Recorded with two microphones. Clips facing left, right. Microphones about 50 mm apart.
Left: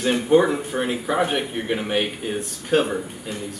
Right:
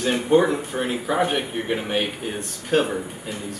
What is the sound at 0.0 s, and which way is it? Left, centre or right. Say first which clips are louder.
Speech: left 1 dB; centre.